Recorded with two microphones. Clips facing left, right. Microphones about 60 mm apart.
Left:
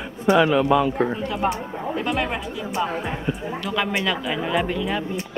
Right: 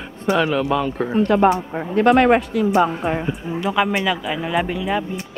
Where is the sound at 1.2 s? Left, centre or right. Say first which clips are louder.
Right 9 dB; right.